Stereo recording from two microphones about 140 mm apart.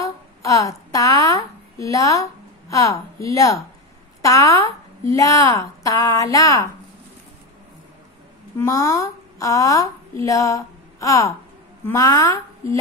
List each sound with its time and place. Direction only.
0.0 s a woman's voice: 25° left (ahead or behind)
8.5 s a woman's voice: 25° left (ahead or behind)